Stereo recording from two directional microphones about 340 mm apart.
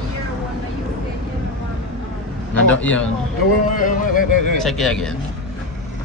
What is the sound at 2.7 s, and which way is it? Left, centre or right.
Speech, centre.